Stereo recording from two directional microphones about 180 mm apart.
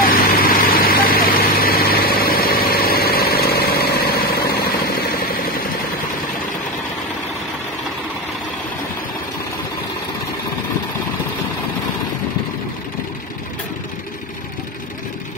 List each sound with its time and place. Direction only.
0.0 s vehicle: 50° left (ahead or behind)